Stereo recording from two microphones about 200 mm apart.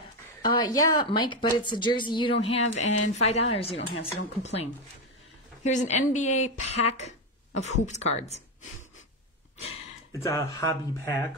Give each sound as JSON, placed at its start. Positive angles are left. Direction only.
{"t": 0.4, "sound": "speech", "side_deg": 20}
{"t": 10.2, "sound": "speech", "side_deg": 15}